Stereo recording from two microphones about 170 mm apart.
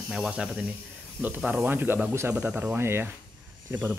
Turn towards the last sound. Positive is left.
turn(degrees=-10)  # may be behind; listen again after turning